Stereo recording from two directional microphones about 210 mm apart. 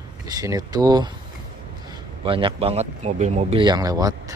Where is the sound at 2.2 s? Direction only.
25° right (ahead or behind).